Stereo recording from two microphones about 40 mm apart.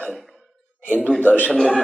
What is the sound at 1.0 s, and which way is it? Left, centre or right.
Speech, left.